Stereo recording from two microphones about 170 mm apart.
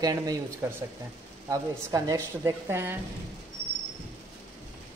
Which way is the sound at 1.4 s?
20° right (ahead or behind).